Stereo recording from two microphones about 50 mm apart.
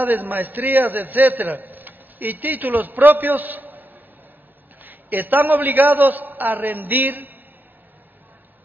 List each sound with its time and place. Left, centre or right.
0.0 s a man's voice: right